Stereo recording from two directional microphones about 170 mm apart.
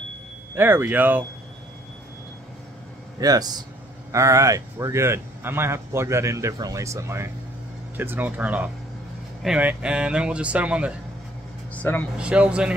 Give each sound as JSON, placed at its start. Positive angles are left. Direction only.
{"t": 0.6, "sound": "speech", "side_deg": -15}
{"t": 3.2, "sound": "a man's voice", "side_deg": -20}
{"t": 11.7, "sound": "speech", "side_deg": 10}
{"t": 12.2, "sound": "speech", "side_deg": -5}